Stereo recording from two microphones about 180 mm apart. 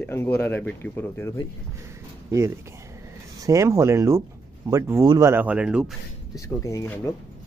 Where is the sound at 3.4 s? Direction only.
15° right (ahead or behind).